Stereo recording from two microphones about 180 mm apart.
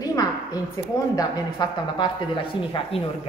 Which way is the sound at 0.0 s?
20° left (ahead or behind).